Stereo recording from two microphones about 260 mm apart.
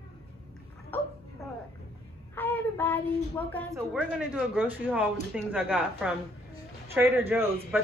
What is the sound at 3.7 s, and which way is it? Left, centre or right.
Speech, centre.